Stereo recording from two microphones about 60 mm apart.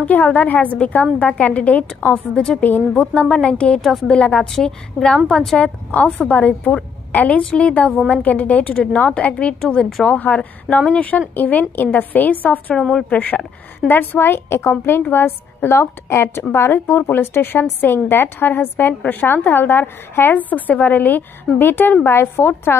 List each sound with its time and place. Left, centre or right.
0.0 s a woman's voice: left
2.3 s a woman's voice: centre
5.6 s a woman's voice: left
6.0 s a woman's voice: centre
6.3 s a woman's voice: left